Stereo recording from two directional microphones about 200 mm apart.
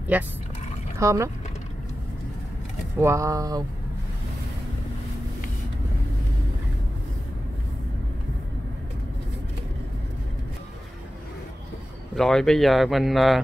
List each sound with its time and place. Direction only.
0.1 s speech: 10° right (ahead or behind)
3.0 s speech: 15° right (ahead or behind)
12.2 s speech: centre (ahead or behind)